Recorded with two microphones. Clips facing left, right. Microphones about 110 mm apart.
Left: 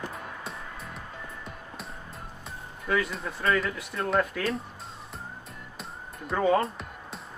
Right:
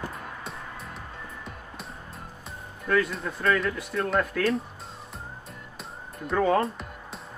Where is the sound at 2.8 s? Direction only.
5° left (ahead or behind).